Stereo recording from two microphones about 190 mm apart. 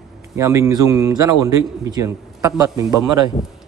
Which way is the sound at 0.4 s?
15° right (ahead or behind).